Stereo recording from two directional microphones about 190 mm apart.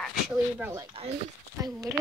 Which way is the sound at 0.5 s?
10° right (ahead or behind).